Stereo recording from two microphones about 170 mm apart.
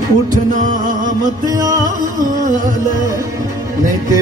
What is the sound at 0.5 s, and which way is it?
Music, 50° right (ahead or behind).